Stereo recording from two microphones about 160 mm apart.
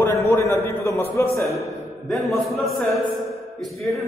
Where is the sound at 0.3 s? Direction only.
15° left (ahead or behind).